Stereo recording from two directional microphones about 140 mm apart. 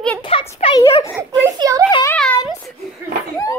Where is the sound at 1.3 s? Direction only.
25° right (ahead or behind).